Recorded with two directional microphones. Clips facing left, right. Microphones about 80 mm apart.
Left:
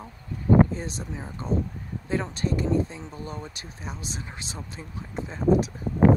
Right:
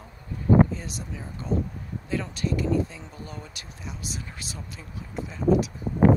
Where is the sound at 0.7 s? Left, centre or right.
Left.